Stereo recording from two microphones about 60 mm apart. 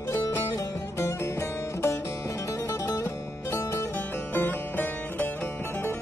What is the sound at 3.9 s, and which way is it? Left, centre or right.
Music, left.